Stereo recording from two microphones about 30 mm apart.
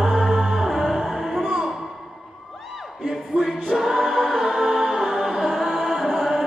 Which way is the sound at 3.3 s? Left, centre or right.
Right.